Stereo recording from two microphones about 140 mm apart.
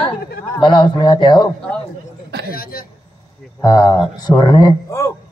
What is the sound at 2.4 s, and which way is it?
Speech, 90° left.